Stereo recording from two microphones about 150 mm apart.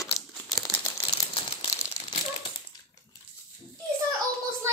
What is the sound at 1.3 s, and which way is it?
Crumpling, 40° left (ahead or behind).